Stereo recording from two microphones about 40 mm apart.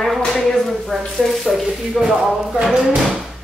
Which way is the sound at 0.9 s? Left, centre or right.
Centre.